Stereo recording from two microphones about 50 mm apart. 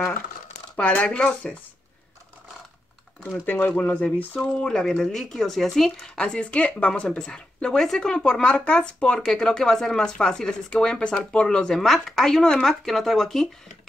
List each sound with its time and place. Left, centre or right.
0.7 s speech: left
3.4 s speech: left
4.4 s speech: centre
6.1 s speech: centre
11.7 s speech: centre